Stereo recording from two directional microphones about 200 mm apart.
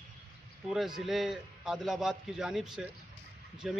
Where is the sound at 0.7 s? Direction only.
Centre (ahead or behind).